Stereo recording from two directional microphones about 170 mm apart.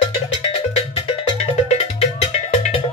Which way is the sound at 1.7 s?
35° left (ahead or behind).